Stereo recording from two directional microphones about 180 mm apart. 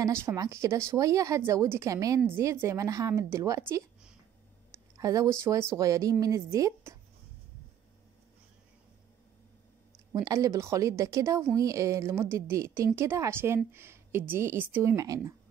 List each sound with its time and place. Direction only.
0.0 s a woman's voice: 15° right (ahead or behind)
4.9 s a woman's voice: 20° right (ahead or behind)
10.1 s a woman's voice: 20° right (ahead or behind)